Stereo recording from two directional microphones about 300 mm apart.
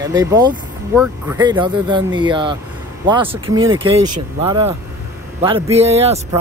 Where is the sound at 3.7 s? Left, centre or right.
Centre.